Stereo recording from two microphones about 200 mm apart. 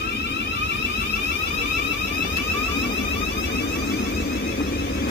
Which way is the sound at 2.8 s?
55° left (ahead or behind).